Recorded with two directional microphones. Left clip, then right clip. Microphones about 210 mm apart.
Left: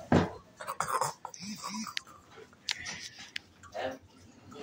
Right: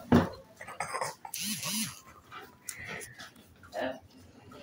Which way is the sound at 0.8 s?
15° left (ahead or behind).